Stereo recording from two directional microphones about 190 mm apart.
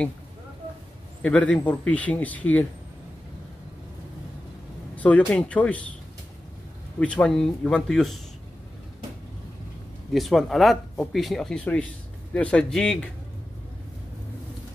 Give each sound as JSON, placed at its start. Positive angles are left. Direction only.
{"t": 1.2, "sound": "speech", "side_deg": 5}
{"t": 4.9, "sound": "speech", "side_deg": 5}
{"t": 7.0, "sound": "speech", "side_deg": 5}
{"t": 10.1, "sound": "speech", "side_deg": 0}